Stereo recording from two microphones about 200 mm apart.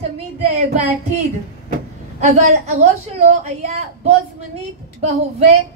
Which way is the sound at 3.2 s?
35° right (ahead or behind).